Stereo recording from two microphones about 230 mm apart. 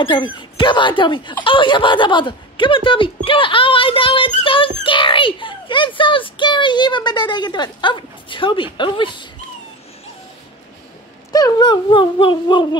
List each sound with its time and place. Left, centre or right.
0.0 s speech: left
3.3 s music: left
4.8 s a child's voice: left
11.3 s speech: centre